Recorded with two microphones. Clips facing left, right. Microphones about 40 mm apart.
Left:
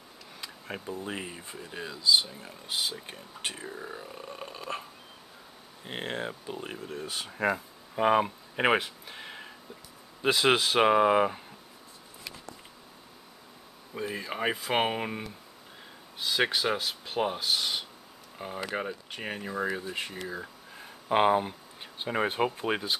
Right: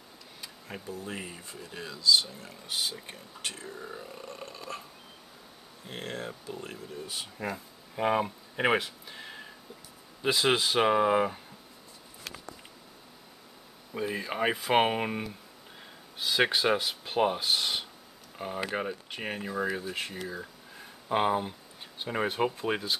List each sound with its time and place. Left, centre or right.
0.8 s speech: left
5.9 s speech: left
6.8 s speech: left
7.4 s speech: left
8.0 s speech: centre
13.9 s speech: centre
21.1 s speech: centre